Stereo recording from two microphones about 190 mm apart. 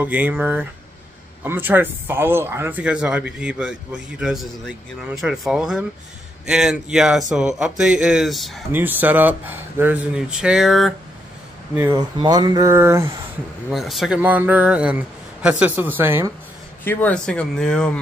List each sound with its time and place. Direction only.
0.0 s speech: 10° right (ahead or behind)
8.7 s speech: 10° right (ahead or behind)
11.7 s speech: 10° right (ahead or behind)
12.2 s speech: 20° right (ahead or behind)
13.7 s speech: centre (ahead or behind)
16.8 s speech: 10° left (ahead or behind)